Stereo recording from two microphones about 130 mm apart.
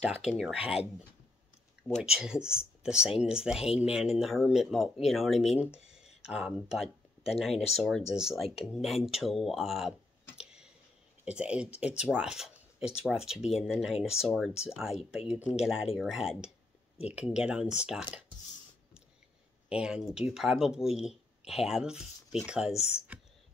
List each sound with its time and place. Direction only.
0.2 s speech: 5° right (ahead or behind)
2.0 s speech: 5° right (ahead or behind)
19.7 s speech: 5° right (ahead or behind)